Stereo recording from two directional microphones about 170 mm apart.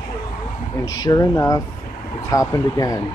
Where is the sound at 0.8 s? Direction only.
25° left (ahead or behind).